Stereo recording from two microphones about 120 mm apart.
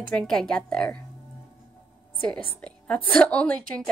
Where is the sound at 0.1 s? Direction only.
5° left (ahead or behind).